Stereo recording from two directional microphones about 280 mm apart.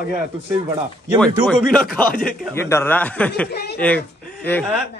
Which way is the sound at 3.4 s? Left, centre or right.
Left.